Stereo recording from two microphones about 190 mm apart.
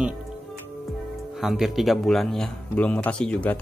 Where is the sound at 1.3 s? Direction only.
Centre (ahead or behind).